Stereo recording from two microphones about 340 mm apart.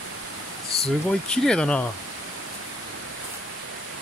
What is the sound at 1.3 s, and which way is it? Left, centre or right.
Speech, centre.